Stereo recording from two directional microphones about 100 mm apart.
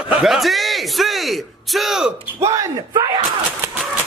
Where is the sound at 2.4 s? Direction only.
35° right (ahead or behind).